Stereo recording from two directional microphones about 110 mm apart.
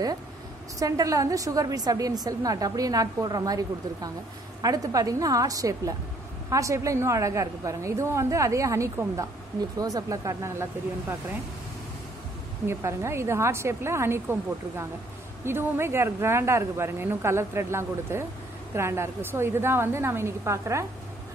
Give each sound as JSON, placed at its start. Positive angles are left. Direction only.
{"t": 0.7, "sound": "a woman's voice", "side_deg": -30}
{"t": 12.6, "sound": "a woman's voice", "side_deg": -25}
{"t": 15.4, "sound": "a woman's voice", "side_deg": -20}